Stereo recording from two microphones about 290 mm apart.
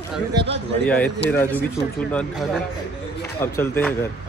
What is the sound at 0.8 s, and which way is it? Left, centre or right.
A man's voice, centre.